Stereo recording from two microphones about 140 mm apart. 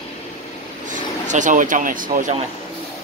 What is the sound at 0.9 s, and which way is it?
Speech, 65° right (ahead or behind).